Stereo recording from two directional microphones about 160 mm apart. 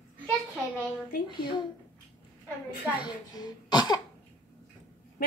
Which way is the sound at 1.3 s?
30° left (ahead or behind).